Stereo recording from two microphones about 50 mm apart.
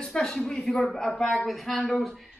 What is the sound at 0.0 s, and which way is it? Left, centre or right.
Speech, centre.